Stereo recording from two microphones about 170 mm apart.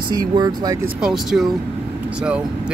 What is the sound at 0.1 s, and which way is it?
Speech, 25° right (ahead or behind).